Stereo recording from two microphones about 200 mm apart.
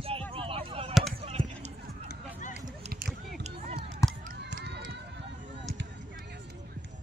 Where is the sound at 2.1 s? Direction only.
40° left (ahead or behind).